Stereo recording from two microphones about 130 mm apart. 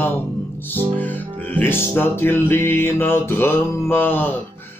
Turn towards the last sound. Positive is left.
turn(degrees=15)  # may be behind; listen again after turning